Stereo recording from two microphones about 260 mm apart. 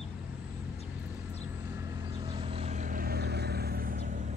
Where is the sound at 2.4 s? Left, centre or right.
Right.